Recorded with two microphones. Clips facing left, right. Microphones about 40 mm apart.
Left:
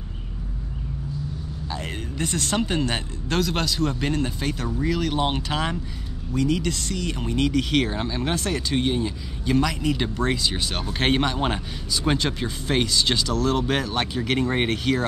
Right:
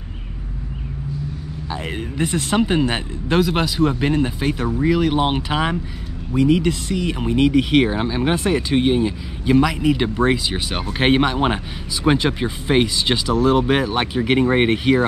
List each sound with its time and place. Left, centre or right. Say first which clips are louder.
1.7 s speech: right 5 dB; centre